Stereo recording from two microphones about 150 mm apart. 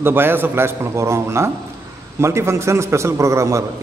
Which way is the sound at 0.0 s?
15° right (ahead or behind).